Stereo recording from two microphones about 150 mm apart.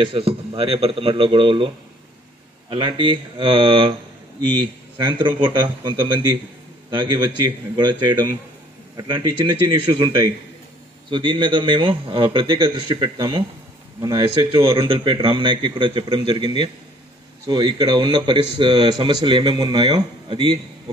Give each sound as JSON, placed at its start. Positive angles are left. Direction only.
{"t": 0.0, "sound": "speech", "side_deg": -35}
{"t": 2.7, "sound": "a man's voice", "side_deg": -30}